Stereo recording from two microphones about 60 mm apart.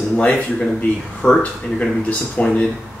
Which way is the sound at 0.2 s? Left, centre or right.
Left.